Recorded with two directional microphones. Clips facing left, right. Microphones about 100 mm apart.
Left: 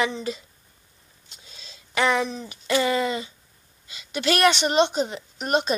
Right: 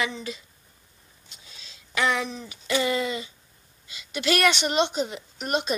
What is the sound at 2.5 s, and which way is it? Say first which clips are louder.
Speech: left 2 dB; 50° left (ahead or behind).